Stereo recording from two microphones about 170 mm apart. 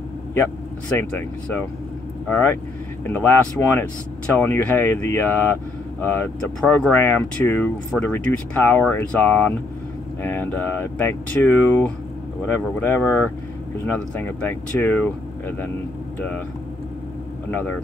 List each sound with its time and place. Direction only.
0.3 s speech: 10° left (ahead or behind)
17.5 s speech: 10° left (ahead or behind)